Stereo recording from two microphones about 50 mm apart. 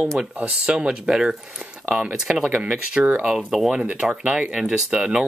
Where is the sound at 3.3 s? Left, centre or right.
Centre.